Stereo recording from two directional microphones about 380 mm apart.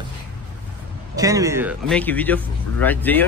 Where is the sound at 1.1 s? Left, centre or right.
Centre.